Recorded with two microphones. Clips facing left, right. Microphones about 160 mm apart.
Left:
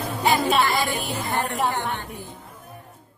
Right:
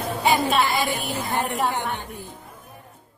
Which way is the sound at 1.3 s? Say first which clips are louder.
Even; 20° right (ahead or behind).